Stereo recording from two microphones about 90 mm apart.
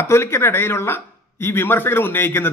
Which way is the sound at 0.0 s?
30° left (ahead or behind).